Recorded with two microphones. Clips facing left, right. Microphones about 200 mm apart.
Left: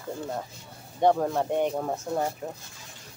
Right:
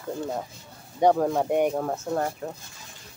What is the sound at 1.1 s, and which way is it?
Speech, centre (ahead or behind).